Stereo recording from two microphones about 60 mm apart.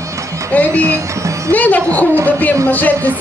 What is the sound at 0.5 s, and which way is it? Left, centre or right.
Speech, left.